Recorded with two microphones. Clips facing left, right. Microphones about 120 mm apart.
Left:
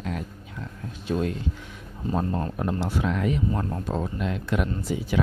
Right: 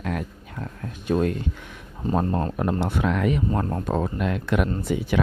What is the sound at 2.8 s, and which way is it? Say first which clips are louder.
Speech: right 2 dB; 65° right (ahead or behind).